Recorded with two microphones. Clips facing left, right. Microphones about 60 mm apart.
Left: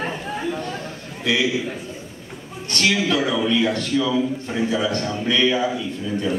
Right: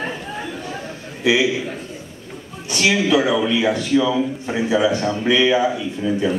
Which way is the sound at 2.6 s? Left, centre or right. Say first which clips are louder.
Right 2 dB; centre.